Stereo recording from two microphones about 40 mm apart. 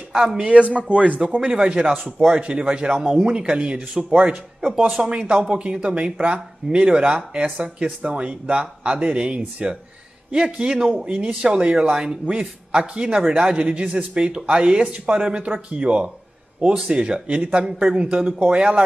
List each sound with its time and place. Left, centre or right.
0.4 s a man's voice: right
1.4 s speech: right
4.6 s speech: centre
5.1 s speech: right
10.7 s speech: centre
12.4 s speech: right